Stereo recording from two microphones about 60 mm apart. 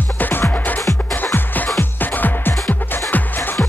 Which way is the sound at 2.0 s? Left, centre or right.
Left.